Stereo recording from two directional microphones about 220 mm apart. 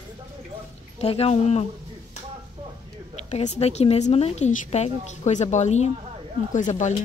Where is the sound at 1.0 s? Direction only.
30° left (ahead or behind).